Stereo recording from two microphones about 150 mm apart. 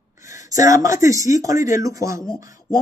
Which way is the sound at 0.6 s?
20° right (ahead or behind).